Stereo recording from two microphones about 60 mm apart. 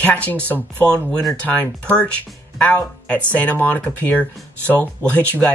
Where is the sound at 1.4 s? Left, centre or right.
Left.